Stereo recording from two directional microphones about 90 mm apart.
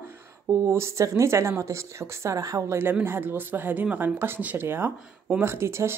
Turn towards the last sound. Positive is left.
turn(degrees=-30)  # may be behind; listen again after turning